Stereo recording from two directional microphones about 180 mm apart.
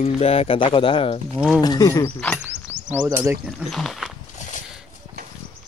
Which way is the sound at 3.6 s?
Centre (ahead or behind).